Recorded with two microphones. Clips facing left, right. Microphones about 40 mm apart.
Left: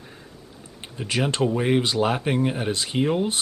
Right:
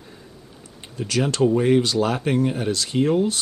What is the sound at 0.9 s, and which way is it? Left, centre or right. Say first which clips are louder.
Speech: right 2 dB; left.